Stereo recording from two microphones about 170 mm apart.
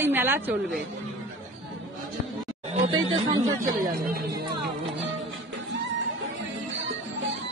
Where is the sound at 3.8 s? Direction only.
60° right (ahead or behind).